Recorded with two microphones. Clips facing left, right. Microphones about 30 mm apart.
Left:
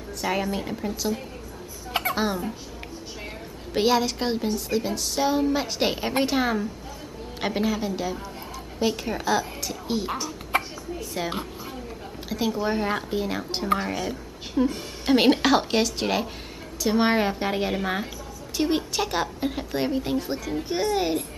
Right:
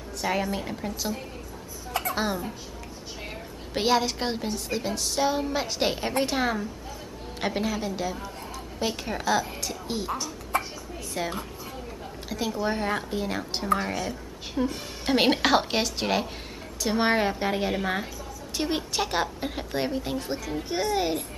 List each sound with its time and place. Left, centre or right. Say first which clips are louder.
0.2 s a woman's voice: left 1 dB; centre
1.9 s a sound: left 3 dB; left
2.1 s a woman's voice: left 2 dB; centre
3.7 s a woman's voice: left 2 dB; centre
10.5 s a sound: left 2 dB; left
11.2 s a woman's voice: even; centre